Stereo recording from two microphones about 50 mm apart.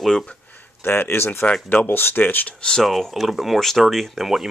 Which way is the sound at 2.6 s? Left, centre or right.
Centre.